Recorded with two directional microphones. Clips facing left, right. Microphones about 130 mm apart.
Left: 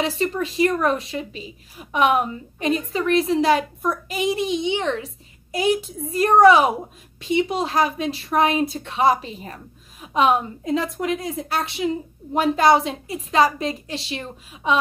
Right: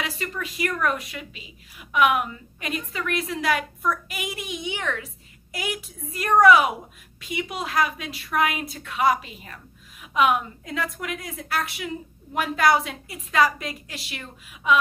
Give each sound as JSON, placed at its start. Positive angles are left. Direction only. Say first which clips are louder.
{"t": 0.0, "sound": "a woman's voice", "louder": "left 8 dB", "side_deg": 30}